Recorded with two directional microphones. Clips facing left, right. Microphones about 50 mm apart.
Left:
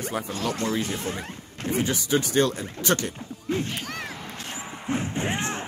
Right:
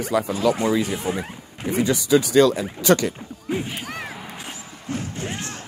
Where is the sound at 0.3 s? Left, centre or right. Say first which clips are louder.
Right 6 dB; centre.